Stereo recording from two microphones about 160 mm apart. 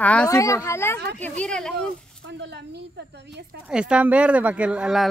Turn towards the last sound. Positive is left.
turn(degrees=-5)  # may be behind; listen again after turning